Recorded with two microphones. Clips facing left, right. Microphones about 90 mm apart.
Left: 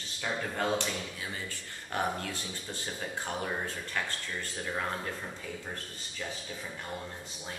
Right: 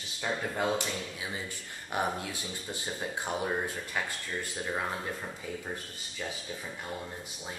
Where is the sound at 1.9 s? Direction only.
15° right (ahead or behind).